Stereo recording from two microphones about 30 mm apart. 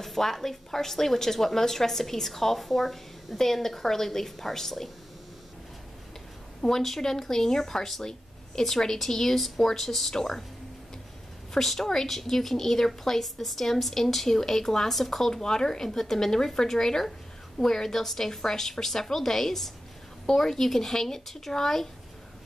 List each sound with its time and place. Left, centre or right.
0.0 s a woman's voice: centre
6.6 s a woman's voice: left
11.5 s a woman's voice: centre